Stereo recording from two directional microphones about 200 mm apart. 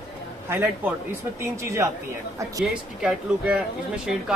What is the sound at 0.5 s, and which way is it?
Speech, 10° right (ahead or behind).